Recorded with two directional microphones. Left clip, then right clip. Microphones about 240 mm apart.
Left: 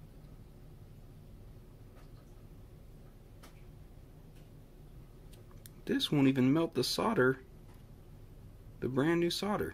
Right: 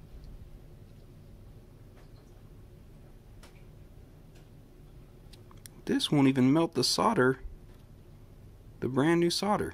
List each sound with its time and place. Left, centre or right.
5.9 s speech: centre
8.7 s speech: centre